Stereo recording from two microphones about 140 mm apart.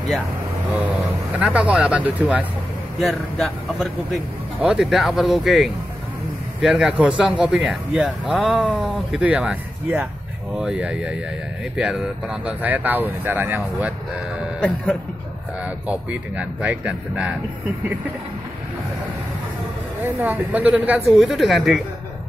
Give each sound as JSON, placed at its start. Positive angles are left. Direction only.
{"t": 0.7, "sound": "speech", "side_deg": -10}
{"t": 3.0, "sound": "speech", "side_deg": 0}
{"t": 15.6, "sound": "speech", "side_deg": -10}
{"t": 20.2, "sound": "speech", "side_deg": -10}